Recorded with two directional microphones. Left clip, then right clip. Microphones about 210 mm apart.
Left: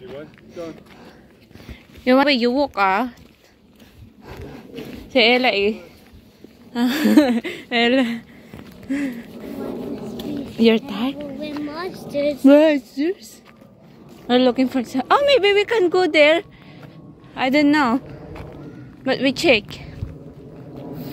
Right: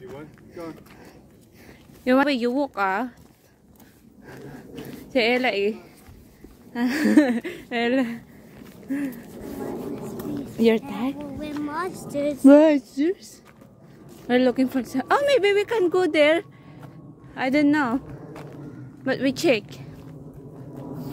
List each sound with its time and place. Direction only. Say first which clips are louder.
0.1 s speech: left 5 dB; centre (ahead or behind)
2.0 s speech: left 5 dB; 5° right (ahead or behind)
4.3 s a sound: left 4 dB; centre (ahead or behind)
6.7 s speech: left 3 dB; 5° right (ahead or behind)
9.6 s vehicle: left 3 dB; 35° right (ahead or behind)
10.5 s speech: left 4 dB; 10° right (ahead or behind); by 18.5 s 5° left (ahead or behind)
19.0 s speech: left 5 dB; 5° right (ahead or behind)